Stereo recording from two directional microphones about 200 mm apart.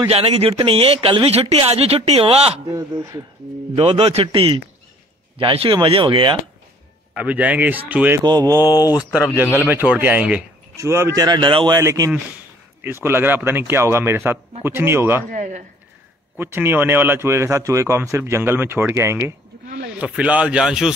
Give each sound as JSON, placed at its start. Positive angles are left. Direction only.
{"t": 0.1, "sound": "speech", "side_deg": -30}
{"t": 2.7, "sound": "a man's voice", "side_deg": -15}
{"t": 3.7, "sound": "speech", "side_deg": -30}
{"t": 7.2, "sound": "a man's voice", "side_deg": -5}
{"t": 8.2, "sound": "a man's voice", "side_deg": -20}
{"t": 15.3, "sound": "speech", "side_deg": -35}
{"t": 16.3, "sound": "a man's voice", "side_deg": -10}